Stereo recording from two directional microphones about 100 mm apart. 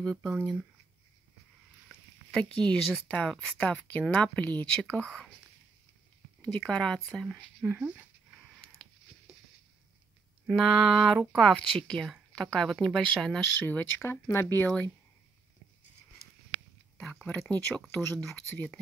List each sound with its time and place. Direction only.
0.0 s speech: 5° left (ahead or behind)
2.3 s speech: 5° left (ahead or behind)
6.4 s speech: 10° left (ahead or behind)
7.6 s dog: 10° right (ahead or behind)
10.4 s a woman's voice: centre (ahead or behind)
13.6 s speech: 20° left (ahead or behind)
16.9 s a sound: 10° left (ahead or behind)
17.3 s speech: 20° left (ahead or behind)